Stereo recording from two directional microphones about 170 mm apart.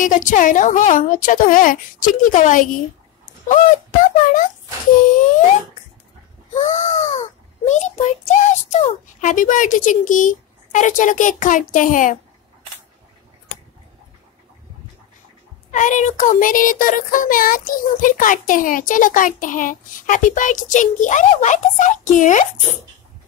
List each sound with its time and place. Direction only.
0.0 s child singing: 50° left (ahead or behind)
6.5 s child singing: 45° left (ahead or behind)
15.7 s child singing: 45° left (ahead or behind)